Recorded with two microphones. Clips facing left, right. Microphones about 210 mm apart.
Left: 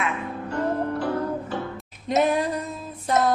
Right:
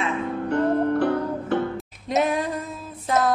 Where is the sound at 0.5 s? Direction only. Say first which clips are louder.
Right 5 dB; 60° right (ahead or behind).